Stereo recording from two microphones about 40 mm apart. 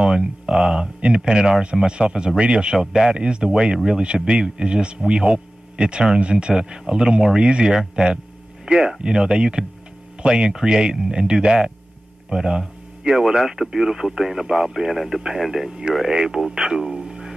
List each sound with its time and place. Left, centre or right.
0.0 s speech: centre
4.0 s speech: right
6.5 s speech: centre
12.3 s a sound: centre
13.4 s speech: centre